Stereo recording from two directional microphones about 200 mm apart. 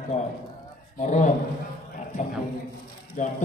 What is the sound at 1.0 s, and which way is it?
Speech, 40° left (ahead or behind).